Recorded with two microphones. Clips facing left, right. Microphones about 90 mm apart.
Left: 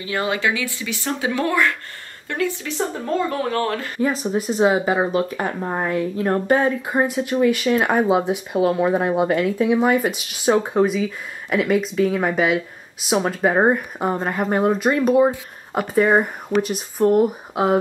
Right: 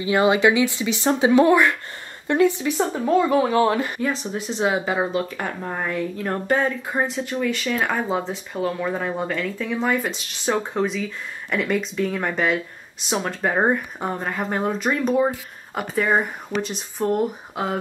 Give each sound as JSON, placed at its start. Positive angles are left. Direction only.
{"t": 0.0, "sound": "speech", "side_deg": -20}
{"t": 4.1, "sound": "speech", "side_deg": 5}
{"t": 5.4, "sound": "speech", "side_deg": 20}
{"t": 5.9, "sound": "speech", "side_deg": 10}